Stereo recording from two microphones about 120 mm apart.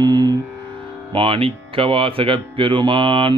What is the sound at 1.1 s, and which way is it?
Speech, 45° right (ahead or behind).